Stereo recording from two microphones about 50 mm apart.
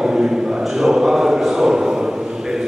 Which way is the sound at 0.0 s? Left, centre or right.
Centre.